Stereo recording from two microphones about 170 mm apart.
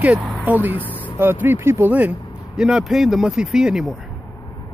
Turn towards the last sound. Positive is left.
turn(degrees=-5)  # may be behind; listen again after turning